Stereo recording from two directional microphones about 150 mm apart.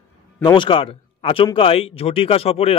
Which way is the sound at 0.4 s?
30° left (ahead or behind).